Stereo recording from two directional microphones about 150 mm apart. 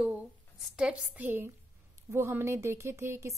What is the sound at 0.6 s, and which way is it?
A woman's voice, 5° right (ahead or behind).